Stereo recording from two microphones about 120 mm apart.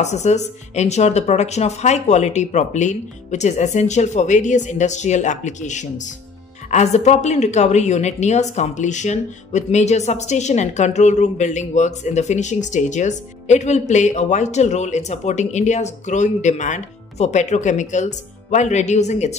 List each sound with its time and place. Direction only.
0.0 s a woman's voice: 75° left (ahead or behind)
6.7 s a woman's voice: 70° left (ahead or behind)